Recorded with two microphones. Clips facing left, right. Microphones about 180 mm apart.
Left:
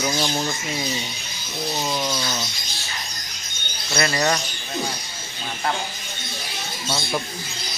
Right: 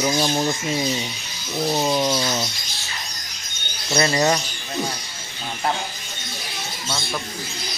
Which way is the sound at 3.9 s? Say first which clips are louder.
Right 3 dB; 20° right (ahead or behind).